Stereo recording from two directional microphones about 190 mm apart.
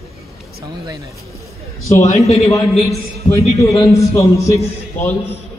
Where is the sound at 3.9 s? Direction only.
15° left (ahead or behind).